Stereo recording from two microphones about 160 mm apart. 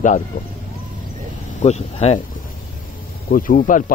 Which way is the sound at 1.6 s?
45° left (ahead or behind).